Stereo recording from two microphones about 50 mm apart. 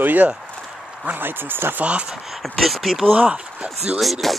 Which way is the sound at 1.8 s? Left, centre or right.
Right.